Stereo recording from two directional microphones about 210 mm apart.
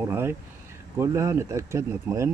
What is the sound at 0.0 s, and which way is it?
Speech, 10° right (ahead or behind).